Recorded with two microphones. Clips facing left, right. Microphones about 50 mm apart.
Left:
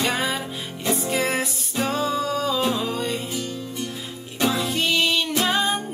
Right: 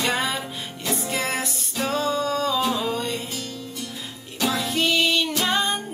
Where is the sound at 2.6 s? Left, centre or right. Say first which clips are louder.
Even; centre.